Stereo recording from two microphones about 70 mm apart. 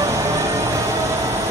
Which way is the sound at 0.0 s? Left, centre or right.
Right.